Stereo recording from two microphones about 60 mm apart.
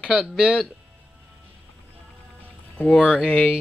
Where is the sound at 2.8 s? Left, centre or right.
Centre.